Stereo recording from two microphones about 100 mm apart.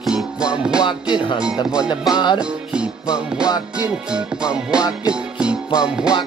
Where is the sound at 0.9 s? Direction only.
50° left (ahead or behind).